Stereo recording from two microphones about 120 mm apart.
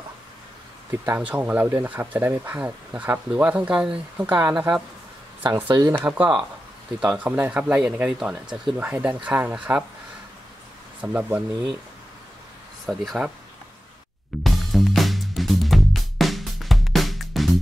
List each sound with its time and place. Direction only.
1.1 s speech: 10° right (ahead or behind)
5.4 s speech: 40° right (ahead or behind)
5.9 s speech: 15° right (ahead or behind)
7.2 s speech: 15° right (ahead or behind)
11.0 s speech: 10° right (ahead or behind)
12.8 s speech: centre (ahead or behind)
14.4 s music: centre (ahead or behind)